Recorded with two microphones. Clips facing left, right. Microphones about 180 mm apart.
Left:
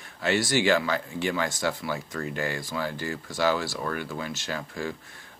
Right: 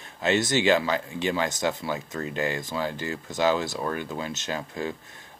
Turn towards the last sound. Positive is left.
turn(degrees=-20)  # may be behind; listen again after turning